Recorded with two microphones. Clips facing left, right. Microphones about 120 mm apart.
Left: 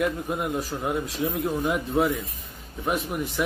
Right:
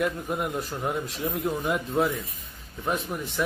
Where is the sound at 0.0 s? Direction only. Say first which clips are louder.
Left 1 dB; centre (ahead or behind).